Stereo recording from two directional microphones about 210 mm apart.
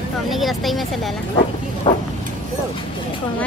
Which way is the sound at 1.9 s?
20° left (ahead or behind).